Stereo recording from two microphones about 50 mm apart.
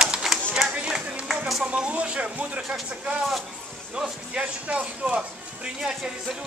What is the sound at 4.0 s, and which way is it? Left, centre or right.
Speech, right.